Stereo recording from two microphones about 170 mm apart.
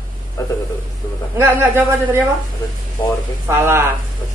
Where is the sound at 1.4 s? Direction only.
15° right (ahead or behind).